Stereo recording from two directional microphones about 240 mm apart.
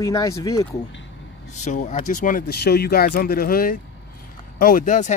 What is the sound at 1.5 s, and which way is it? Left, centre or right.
Speech, left.